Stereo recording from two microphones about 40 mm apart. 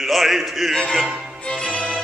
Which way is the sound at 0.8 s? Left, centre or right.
Centre.